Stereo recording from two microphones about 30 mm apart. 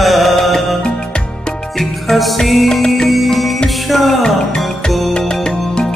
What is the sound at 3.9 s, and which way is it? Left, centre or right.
Music, centre.